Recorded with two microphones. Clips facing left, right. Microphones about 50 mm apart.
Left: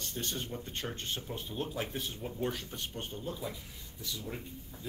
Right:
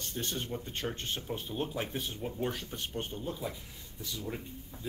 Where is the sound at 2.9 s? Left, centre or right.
Centre.